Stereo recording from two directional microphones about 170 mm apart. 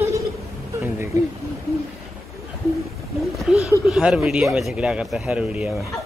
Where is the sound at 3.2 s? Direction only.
Centre (ahead or behind).